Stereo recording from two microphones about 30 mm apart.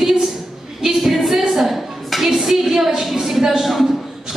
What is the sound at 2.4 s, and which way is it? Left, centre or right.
A woman's voice, centre.